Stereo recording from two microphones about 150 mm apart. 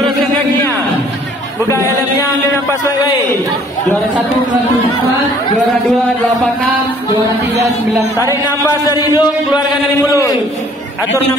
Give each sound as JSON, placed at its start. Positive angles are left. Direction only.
{"t": 8.2, "sound": "a man's voice", "side_deg": 20}